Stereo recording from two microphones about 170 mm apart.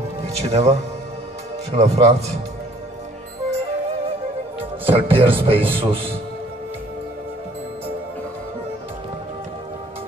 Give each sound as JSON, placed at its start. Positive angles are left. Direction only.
{"t": 0.2, "sound": "a man's voice", "side_deg": -40}
{"t": 4.8, "sound": "a man's voice", "side_deg": -35}